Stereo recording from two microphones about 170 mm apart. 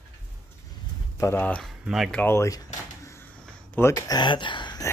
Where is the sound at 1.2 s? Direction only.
10° left (ahead or behind).